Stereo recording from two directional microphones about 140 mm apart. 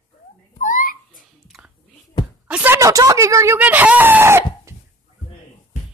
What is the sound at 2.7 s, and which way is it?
Speech, 25° right (ahead or behind).